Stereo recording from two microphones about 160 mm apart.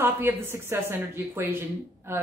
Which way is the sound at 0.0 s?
15° right (ahead or behind).